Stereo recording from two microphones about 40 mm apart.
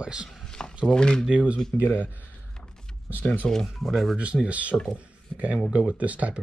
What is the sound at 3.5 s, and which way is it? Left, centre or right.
Speech, centre.